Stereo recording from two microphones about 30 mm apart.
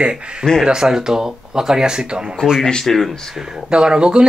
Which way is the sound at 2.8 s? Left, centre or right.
Centre.